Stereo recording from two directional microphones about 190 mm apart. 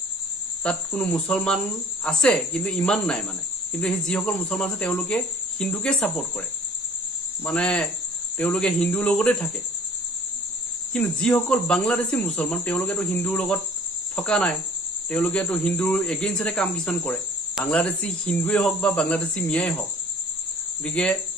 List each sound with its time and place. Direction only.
0.7 s a man's voice: 5° left (ahead or behind)
7.4 s a man's voice: 5° left (ahead or behind)
10.9 s a man's voice: 5° left (ahead or behind)
20.8 s a man's voice: 5° left (ahead or behind)